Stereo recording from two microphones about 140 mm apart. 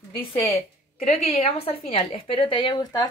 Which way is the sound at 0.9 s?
50° left (ahead or behind).